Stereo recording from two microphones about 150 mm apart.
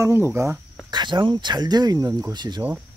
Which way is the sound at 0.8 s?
30° right (ahead or behind).